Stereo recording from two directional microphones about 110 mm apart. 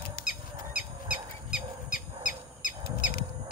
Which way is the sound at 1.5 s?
5° right (ahead or behind).